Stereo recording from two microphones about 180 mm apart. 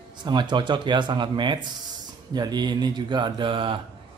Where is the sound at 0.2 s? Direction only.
25° right (ahead or behind).